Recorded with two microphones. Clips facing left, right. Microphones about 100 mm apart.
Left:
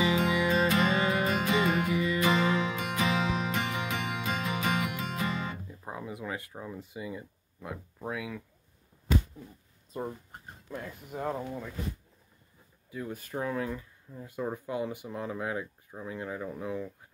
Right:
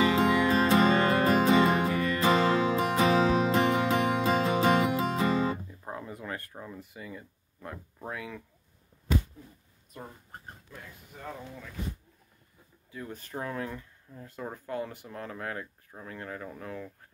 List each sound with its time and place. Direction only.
0.0 s music: 35° right (ahead or behind)
5.7 s a sound: 10° left (ahead or behind)
6.8 s speech: 15° left (ahead or behind)
11.1 s speech: 45° left (ahead or behind)
12.9 s speech: 10° left (ahead or behind)